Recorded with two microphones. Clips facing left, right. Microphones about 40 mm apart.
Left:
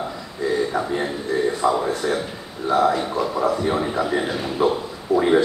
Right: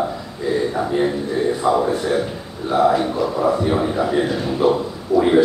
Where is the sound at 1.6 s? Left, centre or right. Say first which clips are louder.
Right 4 dB; centre.